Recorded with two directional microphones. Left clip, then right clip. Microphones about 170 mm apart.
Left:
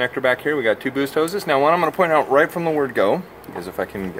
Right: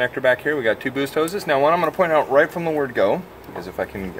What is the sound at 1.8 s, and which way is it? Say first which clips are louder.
Speech: left 1 dB; 45° left (ahead or behind).